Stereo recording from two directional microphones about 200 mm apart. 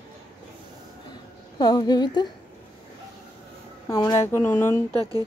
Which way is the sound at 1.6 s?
20° left (ahead or behind).